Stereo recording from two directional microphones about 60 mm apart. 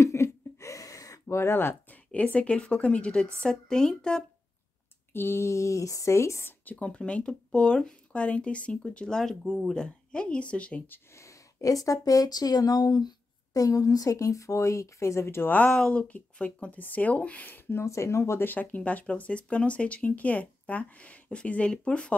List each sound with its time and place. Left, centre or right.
0.0 s a sound: left
1.2 s speech: left
2.1 s speech: left
5.1 s speech: left
6.6 s speech: left
11.1 s speech: left
15.4 s speech: left
15.7 s speech: centre
17.5 s speech: left
17.8 s speech: left
18.4 s speech: left